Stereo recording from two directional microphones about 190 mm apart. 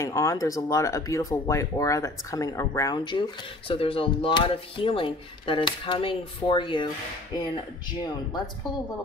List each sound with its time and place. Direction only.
0.0 s speech: 15° left (ahead or behind)